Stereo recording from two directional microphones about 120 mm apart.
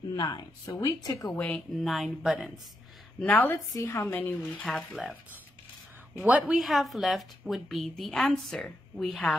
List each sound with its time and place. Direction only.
0.1 s speech: 35° left (ahead or behind)
1.3 s speech: 15° left (ahead or behind)
1.7 s a woman's voice: centre (ahead or behind)
3.2 s speech: 15° left (ahead or behind)
3.5 s a woman's voice: 30° left (ahead or behind)
3.9 s speech: 15° left (ahead or behind)
6.1 s a woman's voice: 15° right (ahead or behind)
6.4 s a woman's voice: centre (ahead or behind)